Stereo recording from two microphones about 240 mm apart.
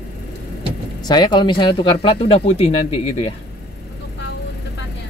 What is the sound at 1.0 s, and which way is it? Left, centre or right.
Speech, centre.